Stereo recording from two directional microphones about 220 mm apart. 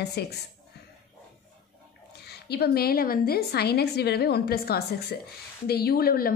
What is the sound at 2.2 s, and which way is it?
A woman's voice, 45° left (ahead or behind).